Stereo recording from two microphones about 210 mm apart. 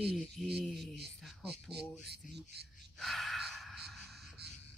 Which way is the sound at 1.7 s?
50° right (ahead or behind).